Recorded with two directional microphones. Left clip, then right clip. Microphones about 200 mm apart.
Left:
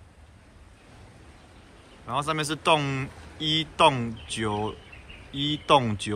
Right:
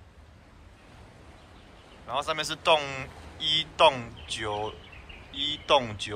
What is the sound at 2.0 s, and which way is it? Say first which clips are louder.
A man's voice: left 2 dB; 5° right (ahead or behind).